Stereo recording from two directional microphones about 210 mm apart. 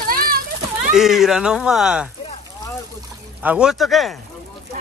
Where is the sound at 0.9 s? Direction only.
Centre (ahead or behind).